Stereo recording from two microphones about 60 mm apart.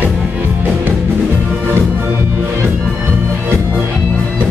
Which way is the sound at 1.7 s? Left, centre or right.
Right.